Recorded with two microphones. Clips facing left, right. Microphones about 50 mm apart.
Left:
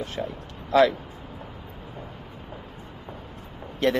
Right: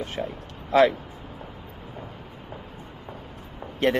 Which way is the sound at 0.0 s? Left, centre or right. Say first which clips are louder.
Even; right.